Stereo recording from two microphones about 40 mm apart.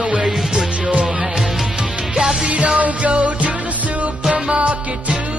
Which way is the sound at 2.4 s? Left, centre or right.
Right.